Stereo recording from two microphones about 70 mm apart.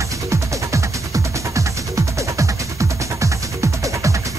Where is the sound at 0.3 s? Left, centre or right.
Right.